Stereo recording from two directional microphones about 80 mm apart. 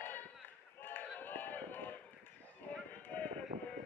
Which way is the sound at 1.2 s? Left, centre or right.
Left.